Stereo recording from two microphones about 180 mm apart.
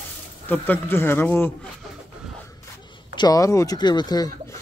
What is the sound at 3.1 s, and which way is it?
Speech, 20° left (ahead or behind).